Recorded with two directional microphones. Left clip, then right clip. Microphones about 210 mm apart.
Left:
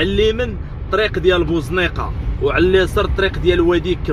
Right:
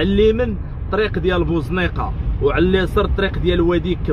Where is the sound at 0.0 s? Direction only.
20° right (ahead or behind).